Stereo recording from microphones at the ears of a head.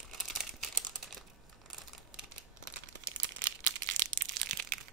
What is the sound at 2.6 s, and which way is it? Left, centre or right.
Crumpling, right.